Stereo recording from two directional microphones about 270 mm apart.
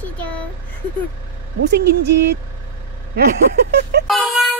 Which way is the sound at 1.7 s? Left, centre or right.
Right.